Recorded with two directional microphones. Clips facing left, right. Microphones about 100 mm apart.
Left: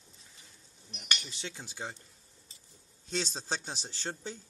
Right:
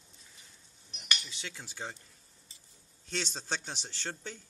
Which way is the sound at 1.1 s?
25° left (ahead or behind).